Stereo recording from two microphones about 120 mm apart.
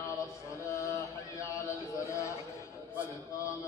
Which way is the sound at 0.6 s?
25° left (ahead or behind).